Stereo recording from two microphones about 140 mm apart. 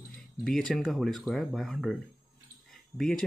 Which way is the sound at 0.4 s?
5° left (ahead or behind).